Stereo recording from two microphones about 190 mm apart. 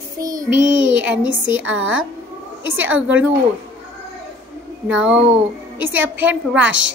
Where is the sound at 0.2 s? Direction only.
20° right (ahead or behind).